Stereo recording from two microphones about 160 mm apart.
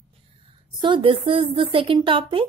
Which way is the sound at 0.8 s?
35° right (ahead or behind).